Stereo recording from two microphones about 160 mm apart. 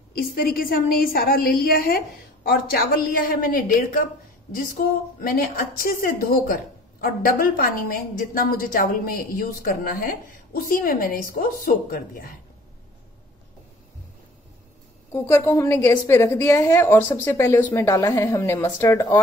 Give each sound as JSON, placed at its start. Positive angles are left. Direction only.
{"t": 0.2, "sound": "a woman's voice", "side_deg": 65}
{"t": 15.1, "sound": "a woman's voice", "side_deg": 15}